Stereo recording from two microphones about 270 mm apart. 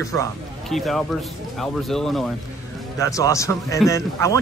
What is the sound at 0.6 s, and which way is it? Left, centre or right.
Speech, centre.